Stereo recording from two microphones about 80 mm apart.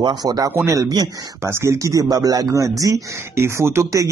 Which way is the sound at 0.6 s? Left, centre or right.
Right.